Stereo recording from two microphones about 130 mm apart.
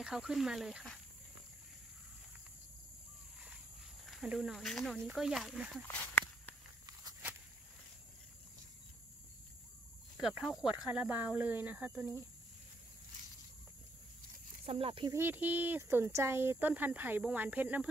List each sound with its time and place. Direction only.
0.0 s speech: 5° right (ahead or behind)
4.0 s speech: 5° right (ahead or behind)
5.9 s walk: 10° left (ahead or behind)
10.2 s speech: 5° right (ahead or behind)
14.7 s speech: 45° right (ahead or behind)
15.1 s speech: 15° right (ahead or behind)